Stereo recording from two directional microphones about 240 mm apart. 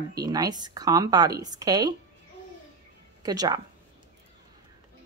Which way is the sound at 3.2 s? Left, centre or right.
Centre.